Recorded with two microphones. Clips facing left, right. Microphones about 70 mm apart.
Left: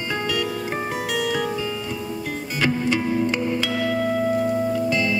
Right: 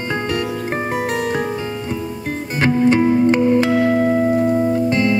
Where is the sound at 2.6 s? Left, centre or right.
Right.